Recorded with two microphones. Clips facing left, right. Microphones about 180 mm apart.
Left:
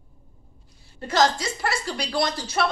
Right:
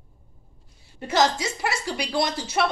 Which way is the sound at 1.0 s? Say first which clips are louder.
Even; 20° right (ahead or behind).